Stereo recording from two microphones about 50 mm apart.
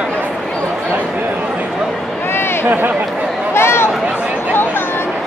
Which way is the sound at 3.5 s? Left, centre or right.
Left.